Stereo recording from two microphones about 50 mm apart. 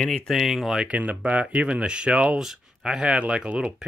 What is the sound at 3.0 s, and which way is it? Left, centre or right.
Speech, right.